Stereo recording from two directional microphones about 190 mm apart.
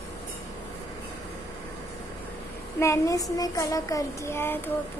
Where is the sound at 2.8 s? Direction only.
15° left (ahead or behind).